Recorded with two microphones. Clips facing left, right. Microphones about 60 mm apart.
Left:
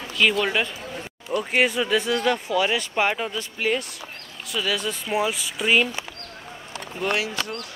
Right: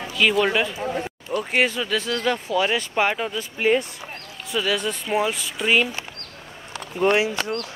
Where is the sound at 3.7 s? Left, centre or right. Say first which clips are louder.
Right 5 dB; right.